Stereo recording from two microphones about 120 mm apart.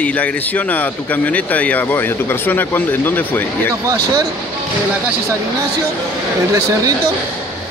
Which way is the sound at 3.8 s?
30° right (ahead or behind).